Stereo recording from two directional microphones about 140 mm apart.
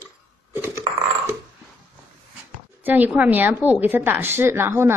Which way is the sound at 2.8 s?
10° right (ahead or behind).